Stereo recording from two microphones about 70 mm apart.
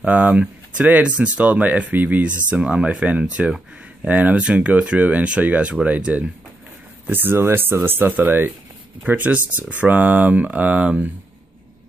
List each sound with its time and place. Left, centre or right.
0.0 s speech: right
7.1 s speech: right